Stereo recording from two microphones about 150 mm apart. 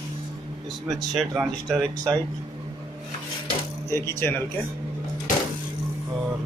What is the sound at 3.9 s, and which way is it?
Speech, 15° left (ahead or behind).